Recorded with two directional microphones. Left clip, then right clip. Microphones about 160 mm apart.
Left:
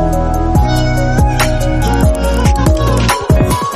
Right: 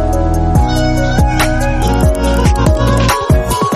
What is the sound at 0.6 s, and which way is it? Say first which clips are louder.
Music: right 1 dB; centre (ahead or behind).